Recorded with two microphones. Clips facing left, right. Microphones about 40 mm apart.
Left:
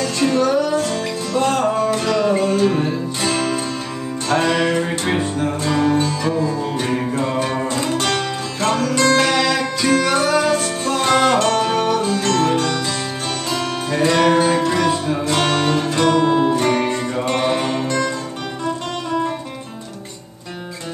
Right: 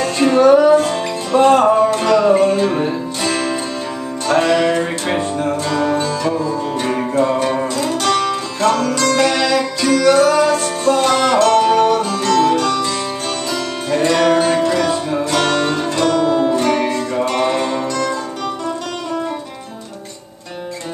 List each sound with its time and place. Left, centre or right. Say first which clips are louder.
0.0 s music: right 5 dB; right
2.0 s music: right 5 dB; centre
5.7 s music: left 2 dB; centre
11.1 s music: left 3 dB; centre
11.4 s music: right 5 dB; centre
12.2 s music: right 3 dB; centre
13.8 s music: right 2 dB; centre